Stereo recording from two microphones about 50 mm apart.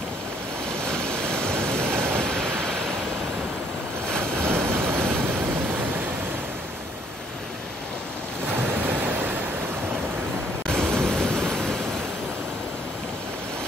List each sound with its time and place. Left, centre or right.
0.8 s waves: centre
2.0 s waves: right
2.2 s waves: centre
4.2 s vehicle: right
5.4 s waves: right
8.5 s waves: right
10.7 s waves: centre